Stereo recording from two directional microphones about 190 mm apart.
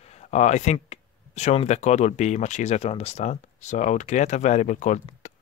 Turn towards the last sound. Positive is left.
turn(degrees=40)  # may be behind; listen again after turning